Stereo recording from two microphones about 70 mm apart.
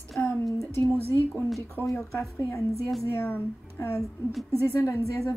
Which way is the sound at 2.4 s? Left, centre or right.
Left.